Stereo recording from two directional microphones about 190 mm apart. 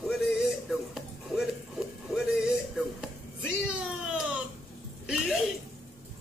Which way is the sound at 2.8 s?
5° right (ahead or behind).